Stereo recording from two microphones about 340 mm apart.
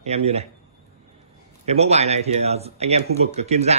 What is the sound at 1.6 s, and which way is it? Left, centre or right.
Speech, centre.